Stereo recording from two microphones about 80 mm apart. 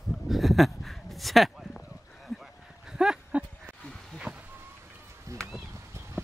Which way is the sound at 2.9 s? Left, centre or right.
Centre.